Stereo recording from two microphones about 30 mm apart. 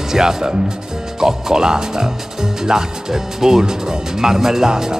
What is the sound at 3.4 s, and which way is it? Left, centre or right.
Speech, centre.